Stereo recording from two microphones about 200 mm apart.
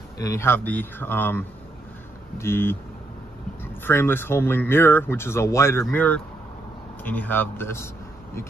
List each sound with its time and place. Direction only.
0.2 s speech: 15° left (ahead or behind)
3.8 s speech: 10° left (ahead or behind)